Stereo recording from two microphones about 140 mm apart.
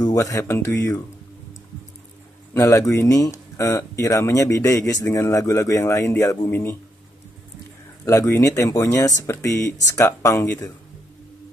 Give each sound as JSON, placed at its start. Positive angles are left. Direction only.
{"t": 0.0, "sound": "speech", "side_deg": 25}
{"t": 2.5, "sound": "speech", "side_deg": 25}
{"t": 8.0, "sound": "speech", "side_deg": 20}